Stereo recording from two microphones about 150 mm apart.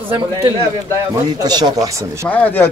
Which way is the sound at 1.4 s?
30° right (ahead or behind).